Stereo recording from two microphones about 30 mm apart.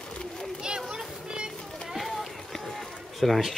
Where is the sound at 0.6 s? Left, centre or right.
Right.